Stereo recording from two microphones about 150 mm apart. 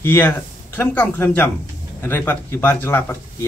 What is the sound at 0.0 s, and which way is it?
A man's voice, 15° left (ahead or behind).